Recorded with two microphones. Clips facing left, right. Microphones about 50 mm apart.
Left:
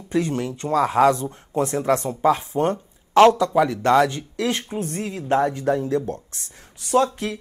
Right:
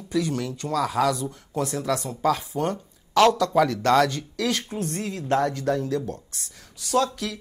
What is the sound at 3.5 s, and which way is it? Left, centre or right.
Speech, centre.